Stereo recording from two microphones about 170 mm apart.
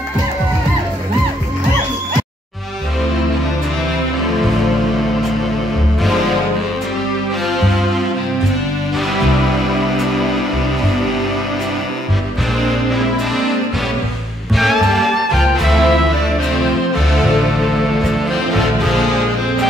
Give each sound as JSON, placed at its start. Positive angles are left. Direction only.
{"t": 14.6, "sound": "music", "side_deg": 0}
{"t": 18.3, "sound": "music", "side_deg": 0}